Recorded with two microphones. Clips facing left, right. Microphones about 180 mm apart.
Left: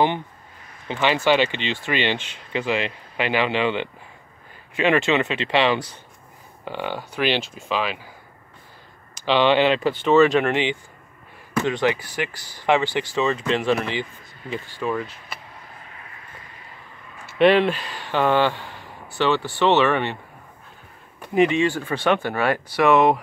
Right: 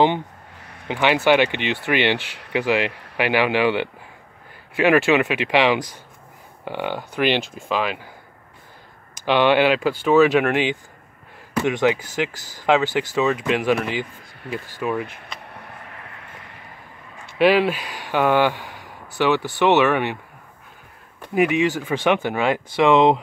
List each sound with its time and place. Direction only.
0.8 s speech: 15° right (ahead or behind)
2.1 s speech: 70° right (ahead or behind)
2.5 s speech: 15° right (ahead or behind)
4.9 s speech: 10° right (ahead or behind)
9.2 s speech: 10° right (ahead or behind)
15.4 s vehicle: 65° right (ahead or behind)
17.4 s speech: 5° right (ahead or behind)
21.4 s speech: 10° right (ahead or behind)